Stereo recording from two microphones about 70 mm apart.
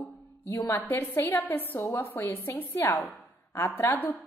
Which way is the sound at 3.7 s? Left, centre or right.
Left.